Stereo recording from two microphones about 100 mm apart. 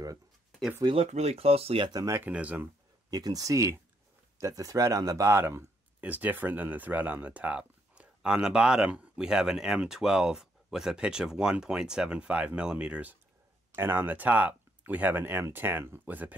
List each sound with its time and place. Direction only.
0.5 s a sound: centre (ahead or behind)
0.9 s speech: 90° right; by 1.9 s 70° right (ahead or behind)
2.0 s speech: 25° right (ahead or behind)
3.1 s speech: 40° right (ahead or behind); by 16.3 s 15° right (ahead or behind)